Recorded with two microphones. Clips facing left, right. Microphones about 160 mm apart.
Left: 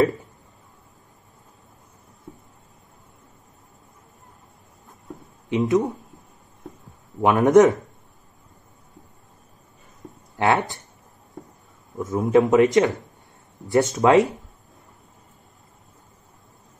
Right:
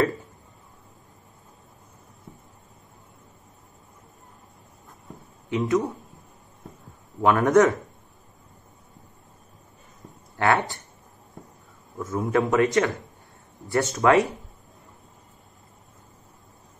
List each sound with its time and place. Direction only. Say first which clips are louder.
5.5 s speech: left 3 dB; 20° left (ahead or behind)
7.2 s a man's voice: left 3 dB; 20° left (ahead or behind)
10.3 s speech: left 2 dB; 20° left (ahead or behind)
12.0 s a man's voice: left 6 dB; 20° left (ahead or behind)